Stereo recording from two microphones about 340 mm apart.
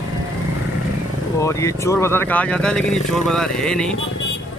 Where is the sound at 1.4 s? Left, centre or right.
Centre.